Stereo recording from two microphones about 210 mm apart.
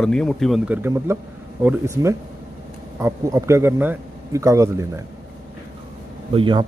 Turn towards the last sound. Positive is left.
turn(degrees=-20)  # may be behind; listen again after turning